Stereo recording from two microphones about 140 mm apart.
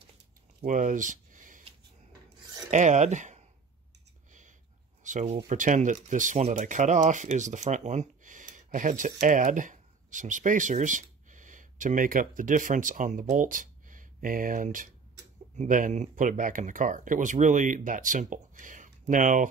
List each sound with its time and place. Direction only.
0.7 s a sound: 65° right (ahead or behind)
2.7 s speech: 55° right (ahead or behind)
5.0 s speech: 60° right (ahead or behind)